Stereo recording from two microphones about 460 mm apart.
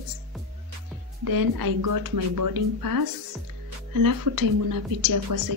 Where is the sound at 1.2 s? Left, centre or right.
Right.